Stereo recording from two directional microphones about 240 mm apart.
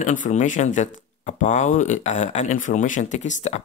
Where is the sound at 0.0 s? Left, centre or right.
Left.